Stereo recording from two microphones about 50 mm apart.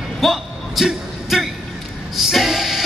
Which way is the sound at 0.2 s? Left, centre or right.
Centre.